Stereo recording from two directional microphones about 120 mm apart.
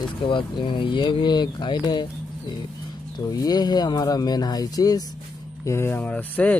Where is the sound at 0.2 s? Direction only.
45° left (ahead or behind).